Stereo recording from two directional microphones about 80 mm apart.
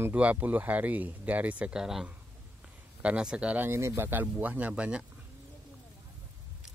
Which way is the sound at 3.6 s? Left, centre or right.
Right.